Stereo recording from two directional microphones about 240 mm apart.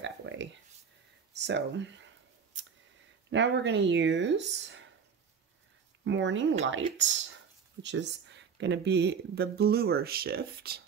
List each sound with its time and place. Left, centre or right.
0.0 s a sound: right
3.3 s speech: right
6.0 s speech: right